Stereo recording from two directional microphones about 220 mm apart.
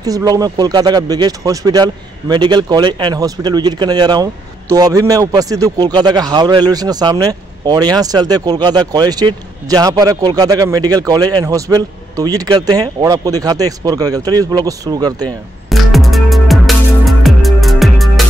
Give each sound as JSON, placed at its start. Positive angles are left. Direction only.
{"t": 0.0, "sound": "speech", "side_deg": -15}
{"t": 15.2, "sound": "music", "side_deg": 0}